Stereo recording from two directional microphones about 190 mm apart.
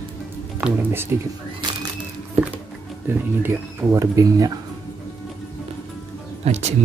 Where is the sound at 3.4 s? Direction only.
15° right (ahead or behind).